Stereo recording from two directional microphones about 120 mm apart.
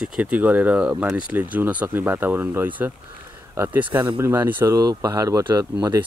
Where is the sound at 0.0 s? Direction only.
10° right (ahead or behind).